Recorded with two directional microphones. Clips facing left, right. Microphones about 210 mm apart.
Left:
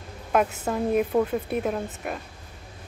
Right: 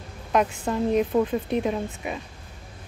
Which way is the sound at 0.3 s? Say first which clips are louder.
Even; 5° left (ahead or behind).